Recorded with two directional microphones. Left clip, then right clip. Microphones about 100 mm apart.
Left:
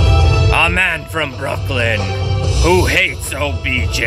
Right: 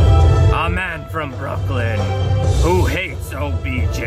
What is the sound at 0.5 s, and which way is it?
Music, 5° right (ahead or behind).